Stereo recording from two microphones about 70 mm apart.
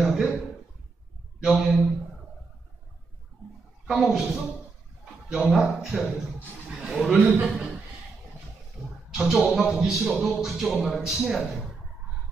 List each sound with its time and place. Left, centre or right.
0.0 s a sound: centre
1.4 s speech: centre
3.9 s speech: centre
5.3 s a man's voice: centre
8.8 s a sound: centre
9.1 s a man's voice: centre